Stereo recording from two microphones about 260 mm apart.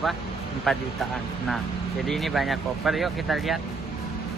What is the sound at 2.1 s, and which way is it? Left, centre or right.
Speech, centre.